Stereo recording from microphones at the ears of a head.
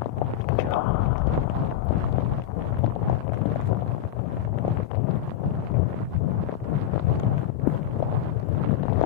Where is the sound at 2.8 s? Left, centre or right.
Left.